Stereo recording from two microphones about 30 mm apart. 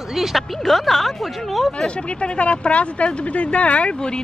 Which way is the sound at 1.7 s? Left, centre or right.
Left.